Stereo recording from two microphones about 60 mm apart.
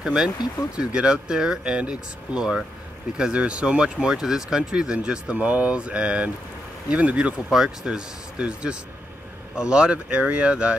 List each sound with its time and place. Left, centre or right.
0.0 s speech: centre
7.5 s speech: centre